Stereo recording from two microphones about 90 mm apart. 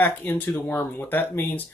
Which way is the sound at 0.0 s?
20° left (ahead or behind).